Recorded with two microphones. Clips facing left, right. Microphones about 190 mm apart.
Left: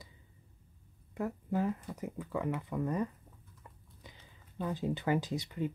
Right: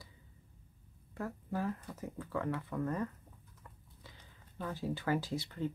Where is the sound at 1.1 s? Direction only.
20° left (ahead or behind).